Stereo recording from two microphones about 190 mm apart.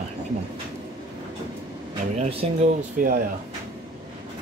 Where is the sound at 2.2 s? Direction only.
30° right (ahead or behind).